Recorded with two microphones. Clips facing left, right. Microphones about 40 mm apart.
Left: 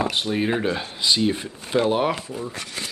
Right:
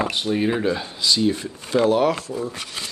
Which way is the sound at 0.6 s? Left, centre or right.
Centre.